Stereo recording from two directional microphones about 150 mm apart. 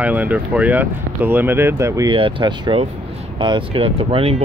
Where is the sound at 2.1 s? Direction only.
35° right (ahead or behind).